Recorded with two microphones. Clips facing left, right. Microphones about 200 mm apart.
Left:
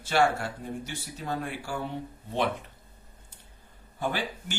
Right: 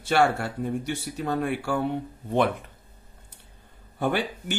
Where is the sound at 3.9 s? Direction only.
55° right (ahead or behind).